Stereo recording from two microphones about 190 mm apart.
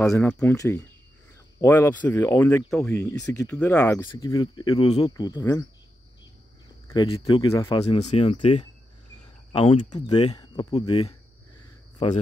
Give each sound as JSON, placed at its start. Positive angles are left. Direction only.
{"t": 0.1, "sound": "speech", "side_deg": 10}
{"t": 4.1, "sound": "speech", "side_deg": 20}
{"t": 6.9, "sound": "speech", "side_deg": 20}
{"t": 7.5, "sound": "speech", "side_deg": 15}
{"t": 7.8, "sound": "speech", "side_deg": 35}